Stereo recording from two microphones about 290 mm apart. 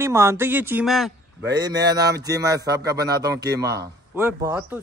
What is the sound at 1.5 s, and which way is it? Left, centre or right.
A man's voice, centre.